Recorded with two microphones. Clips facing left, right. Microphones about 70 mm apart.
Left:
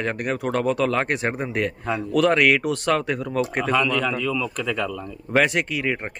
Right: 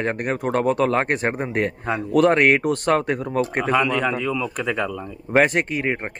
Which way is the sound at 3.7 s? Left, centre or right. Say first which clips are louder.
Right 2 dB; right.